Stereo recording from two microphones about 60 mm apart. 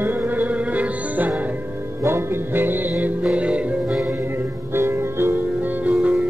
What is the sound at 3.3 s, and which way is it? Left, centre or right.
Music, right.